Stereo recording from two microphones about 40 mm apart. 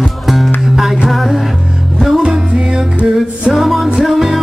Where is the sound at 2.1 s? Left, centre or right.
Centre.